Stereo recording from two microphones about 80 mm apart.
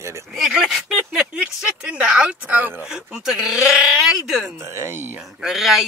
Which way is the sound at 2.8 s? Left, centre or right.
Centre.